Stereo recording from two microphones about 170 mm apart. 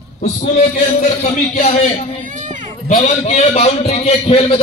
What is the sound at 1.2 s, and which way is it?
Speech, 40° left (ahead or behind).